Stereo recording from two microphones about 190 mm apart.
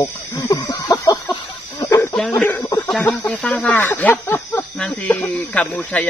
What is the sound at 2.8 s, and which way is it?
Speech, 5° left (ahead or behind).